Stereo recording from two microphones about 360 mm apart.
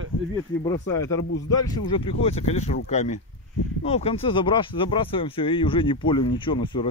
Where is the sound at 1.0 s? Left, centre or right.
Left.